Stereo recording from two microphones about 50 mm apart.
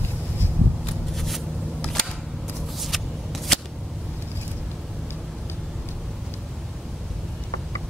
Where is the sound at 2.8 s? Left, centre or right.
Centre.